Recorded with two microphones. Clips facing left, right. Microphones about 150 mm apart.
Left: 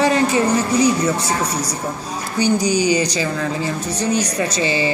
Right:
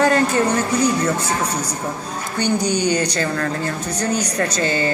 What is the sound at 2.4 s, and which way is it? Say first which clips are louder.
Speech: left 2 dB; 10° left (ahead or behind).